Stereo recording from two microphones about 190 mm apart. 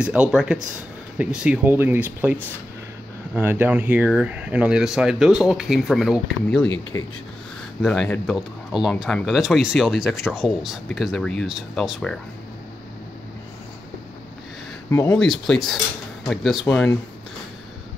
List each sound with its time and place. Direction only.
0.0 s speech: 5° right (ahead or behind)
3.3 s speech: 10° right (ahead or behind)
6.9 s speech: 15° left (ahead or behind)
7.8 s speech: centre (ahead or behind)
14.9 s speech: 15° left (ahead or behind)
15.1 s speech: centre (ahead or behind)